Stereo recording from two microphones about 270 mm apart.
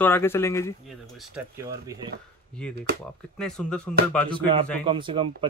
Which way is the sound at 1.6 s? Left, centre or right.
Centre.